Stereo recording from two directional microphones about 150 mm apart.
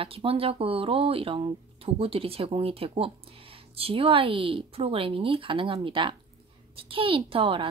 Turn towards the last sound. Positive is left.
turn(degrees=-35)  # may be behind; listen again after turning